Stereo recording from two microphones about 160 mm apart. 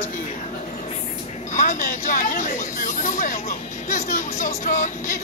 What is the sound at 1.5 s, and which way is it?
Speech, 55° left (ahead or behind).